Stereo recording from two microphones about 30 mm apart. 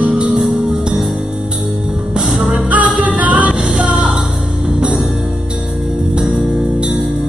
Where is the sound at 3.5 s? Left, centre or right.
Right.